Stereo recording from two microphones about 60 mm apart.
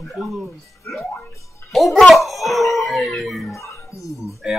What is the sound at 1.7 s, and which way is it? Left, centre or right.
A child's voice, centre.